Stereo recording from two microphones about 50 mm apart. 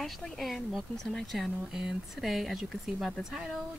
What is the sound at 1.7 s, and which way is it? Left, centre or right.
A woman's voice, centre.